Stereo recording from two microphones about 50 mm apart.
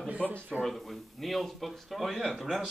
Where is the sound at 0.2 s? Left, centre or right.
Left.